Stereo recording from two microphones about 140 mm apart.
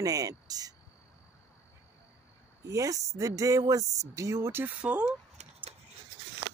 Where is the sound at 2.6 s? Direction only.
25° right (ahead or behind).